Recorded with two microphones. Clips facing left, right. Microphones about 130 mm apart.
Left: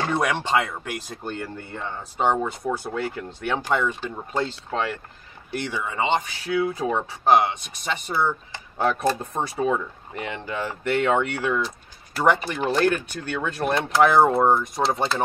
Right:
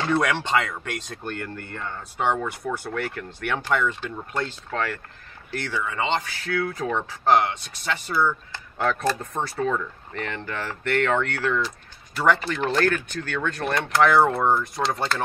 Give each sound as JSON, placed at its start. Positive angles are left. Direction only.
{"t": 0.1, "sound": "speech", "side_deg": 15}
{"t": 2.2, "sound": "speech", "side_deg": 20}